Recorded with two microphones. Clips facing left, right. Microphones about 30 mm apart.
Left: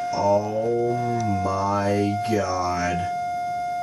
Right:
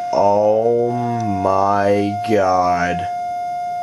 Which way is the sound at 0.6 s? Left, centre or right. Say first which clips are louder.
Right 6 dB; centre.